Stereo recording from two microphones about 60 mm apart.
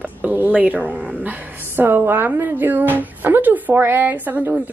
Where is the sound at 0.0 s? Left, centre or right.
Right.